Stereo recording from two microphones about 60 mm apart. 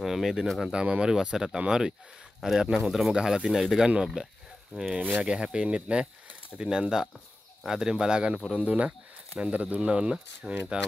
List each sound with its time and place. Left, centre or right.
0.0 s speech: centre